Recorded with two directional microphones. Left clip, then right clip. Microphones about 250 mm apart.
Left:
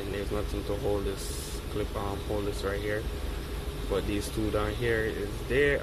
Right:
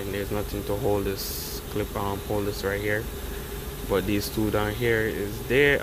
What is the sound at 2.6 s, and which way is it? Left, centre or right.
Speech, right.